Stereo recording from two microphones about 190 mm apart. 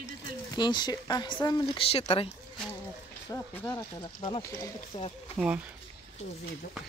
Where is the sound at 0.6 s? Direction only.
20° left (ahead or behind).